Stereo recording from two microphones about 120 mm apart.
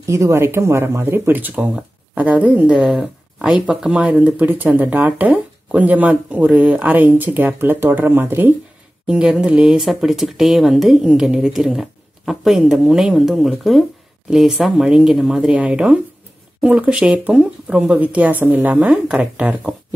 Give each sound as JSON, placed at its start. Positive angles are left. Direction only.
{"t": 0.0, "sound": "speech", "side_deg": -25}